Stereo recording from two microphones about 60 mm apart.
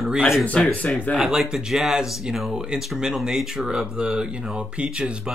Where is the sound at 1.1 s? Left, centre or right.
Centre.